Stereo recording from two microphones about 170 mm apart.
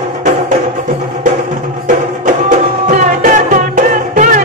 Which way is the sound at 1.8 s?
50° right (ahead or behind).